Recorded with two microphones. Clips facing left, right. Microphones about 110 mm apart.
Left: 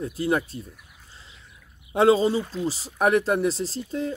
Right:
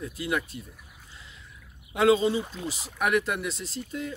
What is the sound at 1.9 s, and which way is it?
Speech, 30° left (ahead or behind).